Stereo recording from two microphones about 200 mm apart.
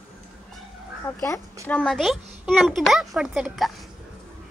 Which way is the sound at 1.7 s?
5° left (ahead or behind).